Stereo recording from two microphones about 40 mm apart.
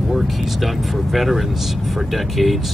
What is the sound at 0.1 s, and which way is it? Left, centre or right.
Speech, centre.